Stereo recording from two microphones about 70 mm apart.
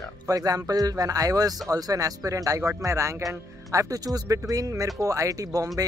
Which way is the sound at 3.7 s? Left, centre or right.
Right.